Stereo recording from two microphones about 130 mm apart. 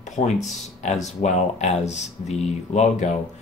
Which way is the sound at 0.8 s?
60° left (ahead or behind).